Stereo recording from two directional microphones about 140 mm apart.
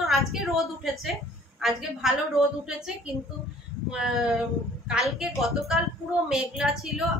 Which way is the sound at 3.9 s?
5° right (ahead or behind).